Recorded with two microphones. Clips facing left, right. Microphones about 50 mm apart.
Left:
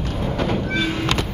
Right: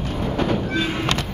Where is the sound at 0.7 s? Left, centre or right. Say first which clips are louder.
Left 1 dB; centre.